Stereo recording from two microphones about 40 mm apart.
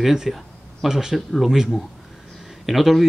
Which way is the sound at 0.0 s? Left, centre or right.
Centre.